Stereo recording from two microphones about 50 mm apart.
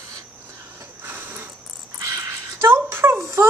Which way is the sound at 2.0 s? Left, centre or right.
Right.